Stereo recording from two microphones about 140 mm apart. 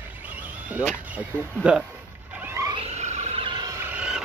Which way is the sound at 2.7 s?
50° right (ahead or behind).